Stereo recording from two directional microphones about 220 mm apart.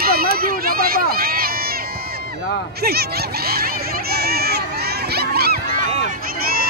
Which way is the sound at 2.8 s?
45° right (ahead or behind).